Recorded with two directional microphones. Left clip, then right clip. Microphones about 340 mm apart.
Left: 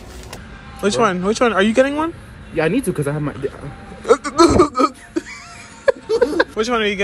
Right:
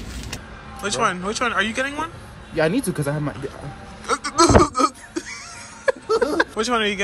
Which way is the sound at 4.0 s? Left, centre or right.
Centre.